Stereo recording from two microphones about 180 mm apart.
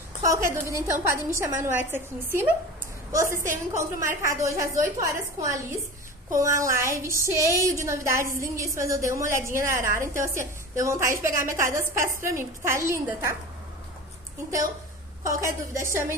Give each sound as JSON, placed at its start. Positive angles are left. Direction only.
{"t": 0.2, "sound": "a woman's voice", "side_deg": -15}
{"t": 15.2, "sound": "a woman's voice", "side_deg": -15}